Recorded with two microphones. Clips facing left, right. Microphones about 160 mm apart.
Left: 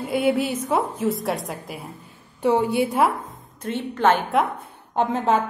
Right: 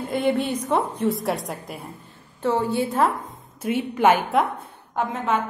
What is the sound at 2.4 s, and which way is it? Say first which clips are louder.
Speech: left 3 dB; 15° left (ahead or behind).